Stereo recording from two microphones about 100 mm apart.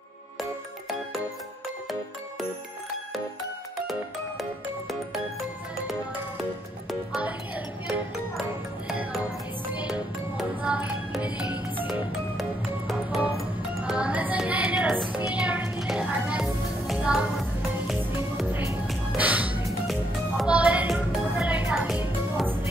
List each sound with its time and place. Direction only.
0.4 s music: centre (ahead or behind)
4.4 s music: centre (ahead or behind)
7.2 s music: 15° right (ahead or behind)
9.7 s music: 10° right (ahead or behind)
11.9 s music: centre (ahead or behind)
18.5 s music: 20° right (ahead or behind); by 21.5 s 5° right (ahead or behind)
21.5 s music: 15° right (ahead or behind)